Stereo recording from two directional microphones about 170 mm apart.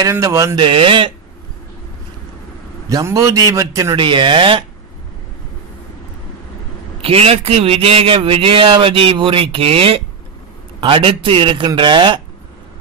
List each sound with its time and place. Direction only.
0.0 s speech: 15° right (ahead or behind)
0.6 s speech: 30° right (ahead or behind)
2.9 s a man's voice: 20° right (ahead or behind)
7.0 s a man's voice: 35° right (ahead or behind)